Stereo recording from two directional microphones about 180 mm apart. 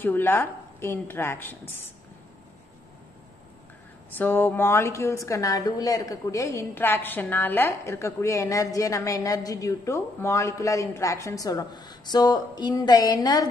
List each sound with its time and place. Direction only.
0.0 s a woman's voice: 10° left (ahead or behind)
4.1 s a woman's voice: 10° left (ahead or behind)